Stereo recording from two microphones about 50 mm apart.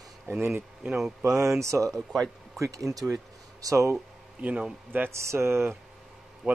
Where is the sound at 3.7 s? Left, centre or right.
Right.